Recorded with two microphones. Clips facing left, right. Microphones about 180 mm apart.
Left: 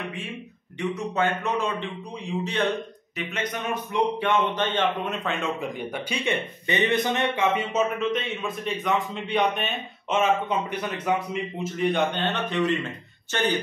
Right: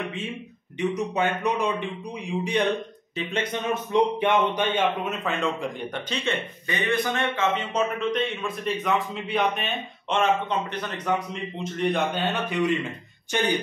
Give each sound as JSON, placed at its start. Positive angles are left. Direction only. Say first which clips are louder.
{"t": 0.7, "sound": "a man's voice", "louder": "right 1 dB", "side_deg": -15}
{"t": 5.2, "sound": "speech", "louder": "right 1 dB", "side_deg": 0}
{"t": 7.5, "sound": "a man's voice", "louder": "left 1 dB", "side_deg": 5}